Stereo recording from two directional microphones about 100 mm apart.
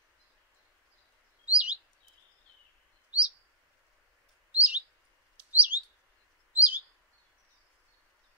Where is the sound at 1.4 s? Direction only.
10° right (ahead or behind).